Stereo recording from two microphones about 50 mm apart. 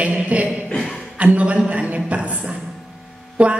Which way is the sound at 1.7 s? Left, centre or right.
Right.